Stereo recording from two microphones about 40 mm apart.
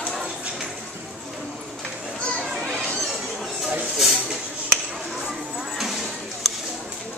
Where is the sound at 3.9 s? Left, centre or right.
Centre.